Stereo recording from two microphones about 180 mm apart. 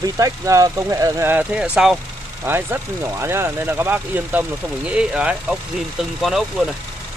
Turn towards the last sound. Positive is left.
turn(degrees=0)  # may be behind; listen again after turning